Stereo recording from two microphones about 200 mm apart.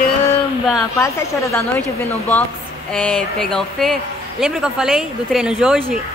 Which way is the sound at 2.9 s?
5° left (ahead or behind).